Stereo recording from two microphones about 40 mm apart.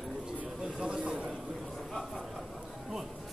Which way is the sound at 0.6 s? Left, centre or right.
Right.